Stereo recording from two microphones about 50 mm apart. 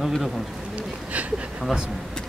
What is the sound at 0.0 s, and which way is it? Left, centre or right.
Speech, centre.